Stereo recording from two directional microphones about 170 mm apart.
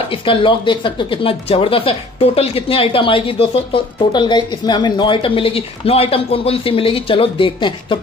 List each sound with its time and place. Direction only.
0.1 s speech: 30° left (ahead or behind)